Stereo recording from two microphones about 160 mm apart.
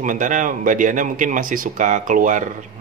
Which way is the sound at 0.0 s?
55° right (ahead or behind).